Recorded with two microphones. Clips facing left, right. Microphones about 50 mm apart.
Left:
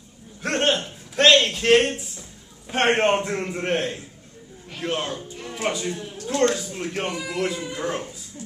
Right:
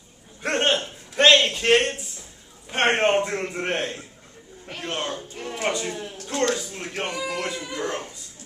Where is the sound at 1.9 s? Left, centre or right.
Centre.